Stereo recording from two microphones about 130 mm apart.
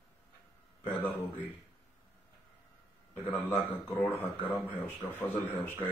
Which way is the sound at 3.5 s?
15° left (ahead or behind).